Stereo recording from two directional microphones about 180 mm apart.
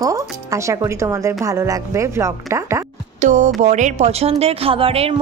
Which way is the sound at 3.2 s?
40° right (ahead or behind).